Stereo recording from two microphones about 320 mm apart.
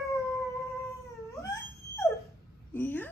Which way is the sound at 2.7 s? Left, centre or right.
Centre.